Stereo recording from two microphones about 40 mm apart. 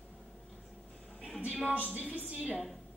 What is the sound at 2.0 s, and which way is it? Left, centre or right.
Speech, right.